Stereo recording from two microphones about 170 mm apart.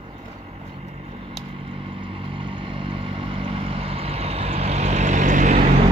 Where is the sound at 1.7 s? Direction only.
30° right (ahead or behind).